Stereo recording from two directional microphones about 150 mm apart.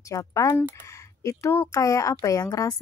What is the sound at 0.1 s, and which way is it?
Speech, 20° left (ahead or behind).